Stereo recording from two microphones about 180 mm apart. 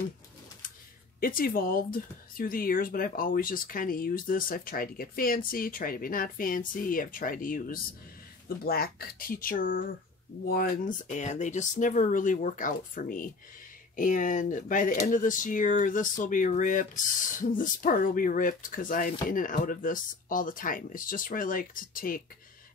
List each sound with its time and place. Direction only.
1.2 s speech: 50° left (ahead or behind)